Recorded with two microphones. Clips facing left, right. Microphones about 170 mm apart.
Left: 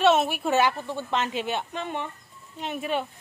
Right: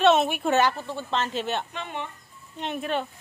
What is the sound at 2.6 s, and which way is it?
Speech, 5° left (ahead or behind).